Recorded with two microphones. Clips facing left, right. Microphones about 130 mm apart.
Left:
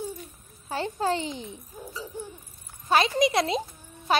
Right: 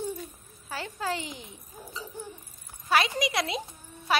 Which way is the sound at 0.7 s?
25° left (ahead or behind).